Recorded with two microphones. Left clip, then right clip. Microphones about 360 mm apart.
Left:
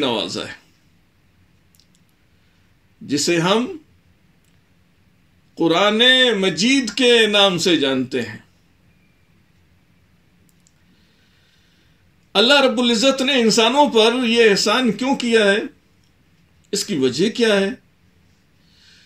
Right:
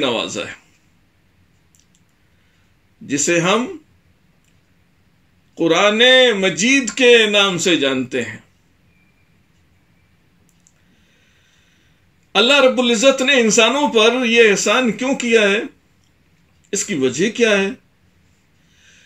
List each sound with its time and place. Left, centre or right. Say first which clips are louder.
0.1 s speech: right 1 dB; centre
3.1 s speech: right 1 dB; centre
5.5 s speech: right 2 dB; centre
6.0 s a sound: right 3 dB; centre
6.4 s speech: right 2 dB; centre
12.4 s speech: right 2 dB; centre
16.7 s speech: right 1 dB; centre
18.8 s snort: right 1 dB; centre